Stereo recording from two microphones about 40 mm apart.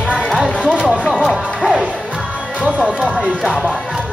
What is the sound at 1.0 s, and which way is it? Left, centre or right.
Music, centre.